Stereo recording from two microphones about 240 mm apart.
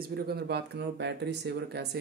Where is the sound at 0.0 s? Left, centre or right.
Right.